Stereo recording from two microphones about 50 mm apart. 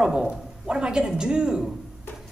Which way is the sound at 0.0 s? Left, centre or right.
Centre.